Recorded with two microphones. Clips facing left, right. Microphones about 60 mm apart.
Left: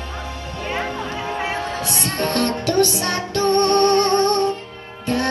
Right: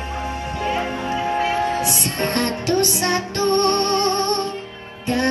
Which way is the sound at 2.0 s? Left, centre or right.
Right.